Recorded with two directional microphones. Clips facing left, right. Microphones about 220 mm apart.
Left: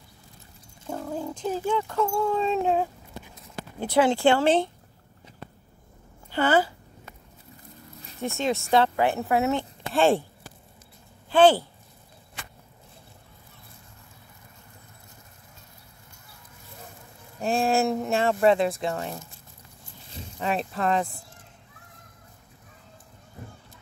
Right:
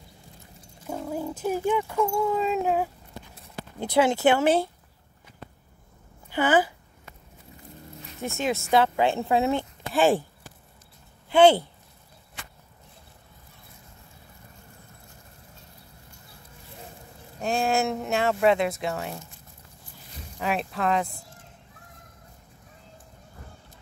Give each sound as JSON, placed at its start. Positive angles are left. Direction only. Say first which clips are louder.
{"t": 0.8, "sound": "speech", "louder": "right 1 dB", "side_deg": -5}
{"t": 4.0, "sound": "speech", "louder": "even", "side_deg": -15}
{"t": 6.3, "sound": "speech", "louder": "even", "side_deg": -10}
{"t": 8.2, "sound": "speech", "louder": "left 1 dB", "side_deg": -10}
{"t": 11.2, "sound": "speech", "louder": "right 1 dB", "side_deg": -20}
{"t": 17.4, "sound": "speech", "louder": "left 2 dB", "side_deg": 0}
{"t": 20.3, "sound": "speech", "louder": "even", "side_deg": 0}